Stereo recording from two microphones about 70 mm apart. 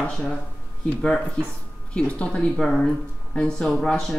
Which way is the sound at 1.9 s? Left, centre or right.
Centre.